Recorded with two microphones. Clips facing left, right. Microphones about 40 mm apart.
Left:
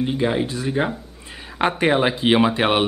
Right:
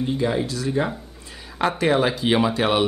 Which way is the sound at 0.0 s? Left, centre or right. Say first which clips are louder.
Left 2 dB; left.